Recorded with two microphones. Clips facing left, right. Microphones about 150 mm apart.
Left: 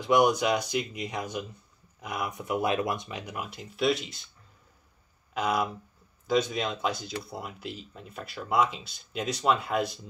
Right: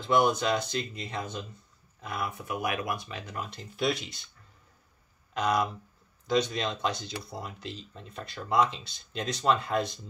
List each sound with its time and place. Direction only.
0.0 s speech: 15° left (ahead or behind)
5.3 s speech: 5° left (ahead or behind)